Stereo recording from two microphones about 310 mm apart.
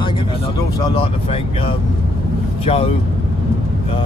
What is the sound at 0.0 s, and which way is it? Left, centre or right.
Vehicle, centre.